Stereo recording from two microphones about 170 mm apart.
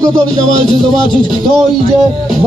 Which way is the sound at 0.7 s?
30° left (ahead or behind).